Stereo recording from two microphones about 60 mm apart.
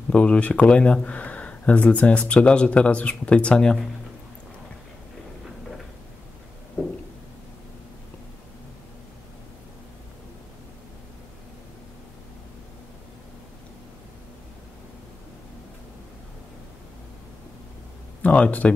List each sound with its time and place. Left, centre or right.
0.1 s speech: centre
6.8 s a sound: centre
18.2 s speech: left